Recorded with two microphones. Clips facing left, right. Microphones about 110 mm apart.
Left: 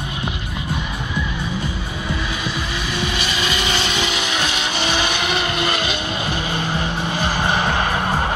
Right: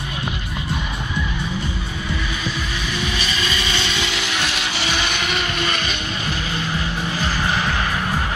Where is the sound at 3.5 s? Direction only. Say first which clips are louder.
Left 2 dB; 35° left (ahead or behind); by 4.6 s 15° left (ahead or behind).